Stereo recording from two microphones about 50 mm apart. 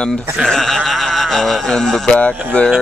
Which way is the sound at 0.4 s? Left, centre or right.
Centre.